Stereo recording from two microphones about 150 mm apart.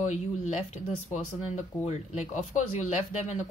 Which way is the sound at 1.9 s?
55° left (ahead or behind).